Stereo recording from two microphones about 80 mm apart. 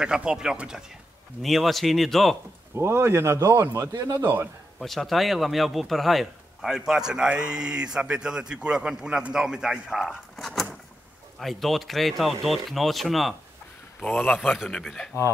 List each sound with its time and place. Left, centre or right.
0.0 s a man's voice: centre
1.4 s speech: centre
2.7 s speech: right
4.1 s a man's voice: right
4.7 s a man's voice: centre